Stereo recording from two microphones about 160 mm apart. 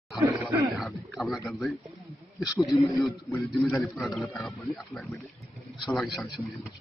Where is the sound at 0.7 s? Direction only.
Centre (ahead or behind).